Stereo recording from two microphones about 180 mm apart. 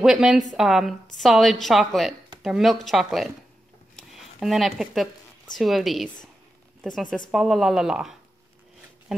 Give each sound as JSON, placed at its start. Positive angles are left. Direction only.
{"t": 0.0, "sound": "a woman's voice", "side_deg": 0}
{"t": 3.9, "sound": "a sound", "side_deg": 0}
{"t": 5.6, "sound": "a woman's voice", "side_deg": 0}
{"t": 7.2, "sound": "a woman's voice", "side_deg": 0}